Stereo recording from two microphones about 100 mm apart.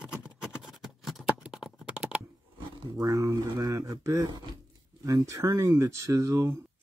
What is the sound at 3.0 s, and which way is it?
Speech, 35° right (ahead or behind).